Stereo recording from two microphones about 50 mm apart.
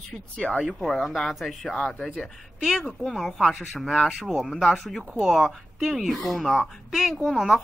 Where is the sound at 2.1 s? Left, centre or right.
Centre.